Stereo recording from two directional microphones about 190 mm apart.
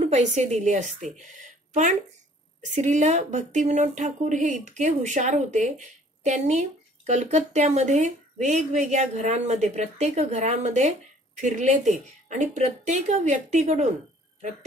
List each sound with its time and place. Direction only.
0.0 s a woman's voice: 35° right (ahead or behind)